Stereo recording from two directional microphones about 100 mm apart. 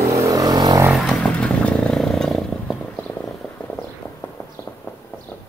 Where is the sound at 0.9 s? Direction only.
5° left (ahead or behind).